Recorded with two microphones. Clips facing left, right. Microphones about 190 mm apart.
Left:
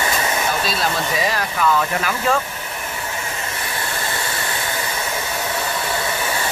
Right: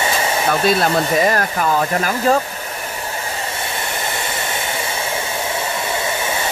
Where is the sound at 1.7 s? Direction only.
40° right (ahead or behind).